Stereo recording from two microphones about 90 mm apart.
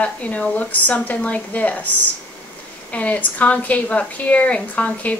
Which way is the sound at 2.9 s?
15° left (ahead or behind).